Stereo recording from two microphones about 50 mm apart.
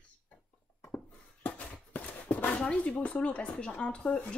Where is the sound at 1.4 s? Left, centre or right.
Left.